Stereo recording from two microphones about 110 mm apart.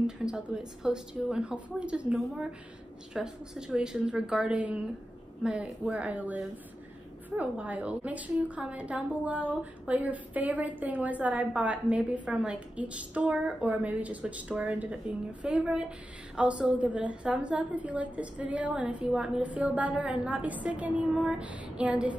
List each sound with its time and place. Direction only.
0.0 s a woman's voice: 10° right (ahead or behind)